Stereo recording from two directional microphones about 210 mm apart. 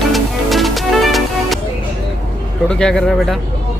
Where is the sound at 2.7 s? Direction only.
5° left (ahead or behind).